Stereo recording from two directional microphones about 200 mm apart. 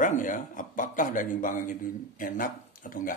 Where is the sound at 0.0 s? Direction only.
40° left (ahead or behind).